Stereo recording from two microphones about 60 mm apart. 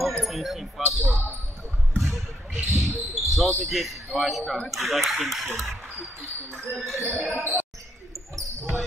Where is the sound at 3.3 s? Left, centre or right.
Centre.